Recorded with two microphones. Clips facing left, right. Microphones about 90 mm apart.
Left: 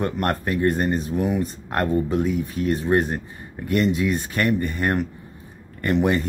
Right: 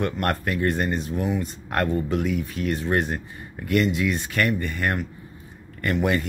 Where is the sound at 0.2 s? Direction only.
25° left (ahead or behind).